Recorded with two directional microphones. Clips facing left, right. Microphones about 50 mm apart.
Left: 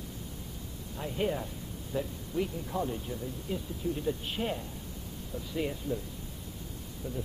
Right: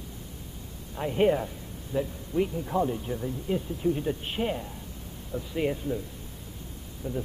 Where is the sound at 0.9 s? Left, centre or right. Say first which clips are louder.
Right 8 dB; right.